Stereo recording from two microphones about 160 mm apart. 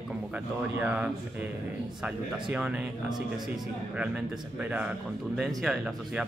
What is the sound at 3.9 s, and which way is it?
A man's voice, 5° right (ahead or behind).